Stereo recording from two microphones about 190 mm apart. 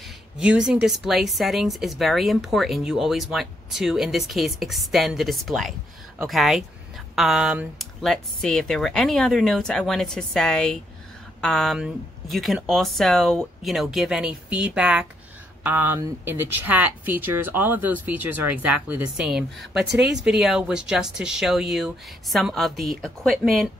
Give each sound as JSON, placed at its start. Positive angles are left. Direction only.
{"t": 0.6, "sound": "speech", "side_deg": -5}